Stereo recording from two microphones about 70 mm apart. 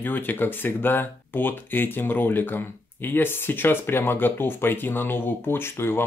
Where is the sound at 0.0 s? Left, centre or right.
Left.